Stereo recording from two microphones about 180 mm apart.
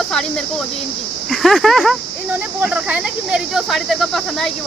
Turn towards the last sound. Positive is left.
turn(degrees=0)  # may be behind; listen again after turning